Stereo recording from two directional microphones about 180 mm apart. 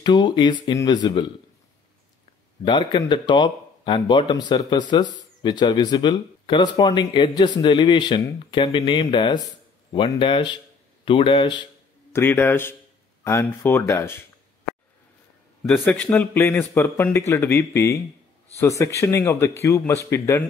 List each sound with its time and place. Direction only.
0.0 s speech: 25° left (ahead or behind)
2.6 s speech: 25° left (ahead or behind)
12.1 s speech: 15° left (ahead or behind)
15.6 s speech: 10° left (ahead or behind)